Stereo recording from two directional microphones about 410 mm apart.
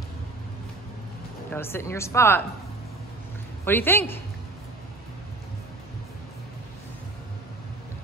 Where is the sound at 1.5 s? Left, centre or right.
Centre.